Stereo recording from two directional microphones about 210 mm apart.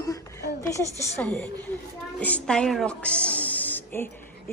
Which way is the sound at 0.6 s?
15° left (ahead or behind).